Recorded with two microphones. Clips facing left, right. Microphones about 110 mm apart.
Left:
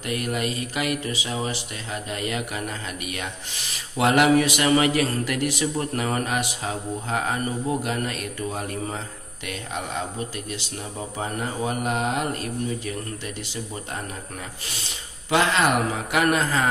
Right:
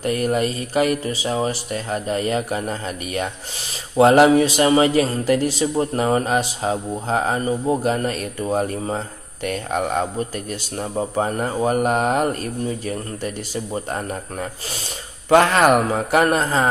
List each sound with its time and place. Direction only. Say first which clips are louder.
0.0 s a man's voice: right 7 dB; 40° right (ahead or behind)
15.2 s a man's voice: right 7 dB; 50° right (ahead or behind)